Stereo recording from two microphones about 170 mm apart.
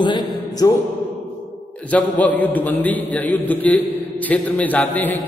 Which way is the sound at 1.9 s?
10° left (ahead or behind).